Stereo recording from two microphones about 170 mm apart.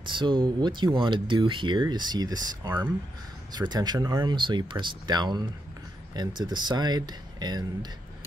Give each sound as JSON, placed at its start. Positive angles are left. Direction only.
{"t": 0.1, "sound": "speech", "side_deg": -30}